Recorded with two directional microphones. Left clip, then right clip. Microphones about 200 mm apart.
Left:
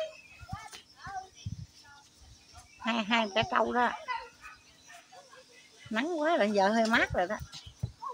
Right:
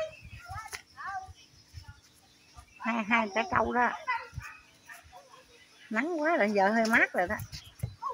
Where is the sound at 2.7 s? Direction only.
5° right (ahead or behind).